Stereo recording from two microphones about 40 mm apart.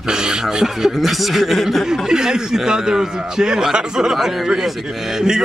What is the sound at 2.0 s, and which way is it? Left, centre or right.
A man's voice, centre.